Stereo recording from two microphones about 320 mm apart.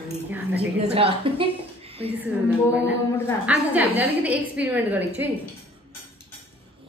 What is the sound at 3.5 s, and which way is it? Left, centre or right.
A woman's voice, centre.